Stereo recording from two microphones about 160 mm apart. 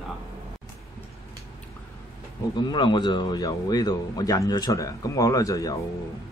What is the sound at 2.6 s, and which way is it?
Speech, 30° left (ahead or behind).